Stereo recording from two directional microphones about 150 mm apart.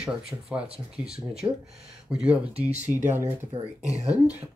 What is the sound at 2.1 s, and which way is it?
Speech, 5° right (ahead or behind).